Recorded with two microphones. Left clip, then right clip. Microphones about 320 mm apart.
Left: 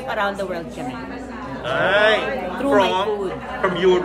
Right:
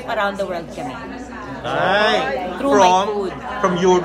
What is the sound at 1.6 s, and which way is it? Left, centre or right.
A man's voice, centre.